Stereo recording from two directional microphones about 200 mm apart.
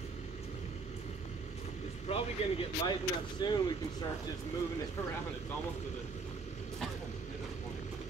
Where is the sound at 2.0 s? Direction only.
30° left (ahead or behind).